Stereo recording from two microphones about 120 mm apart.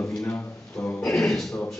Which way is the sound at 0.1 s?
5° left (ahead or behind).